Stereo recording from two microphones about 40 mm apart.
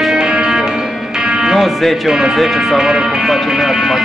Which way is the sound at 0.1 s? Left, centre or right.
Centre.